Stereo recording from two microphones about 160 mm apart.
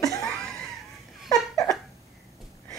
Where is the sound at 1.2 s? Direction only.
20° left (ahead or behind).